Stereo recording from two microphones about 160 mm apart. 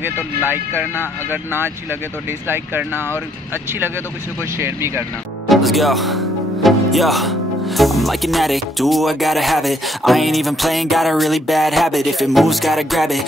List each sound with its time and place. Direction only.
1.3 s speech: 15° right (ahead or behind)
4.6 s speech: 15° right (ahead or behind)
5.5 s speech: centre (ahead or behind)